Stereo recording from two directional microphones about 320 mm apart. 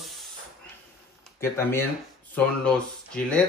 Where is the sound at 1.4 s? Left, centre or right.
Centre.